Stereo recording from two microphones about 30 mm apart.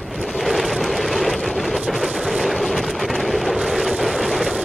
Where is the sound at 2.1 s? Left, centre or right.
Centre.